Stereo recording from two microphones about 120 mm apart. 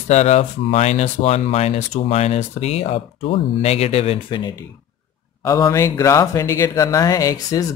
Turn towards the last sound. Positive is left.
turn(degrees=30)  # may be behind; listen again after turning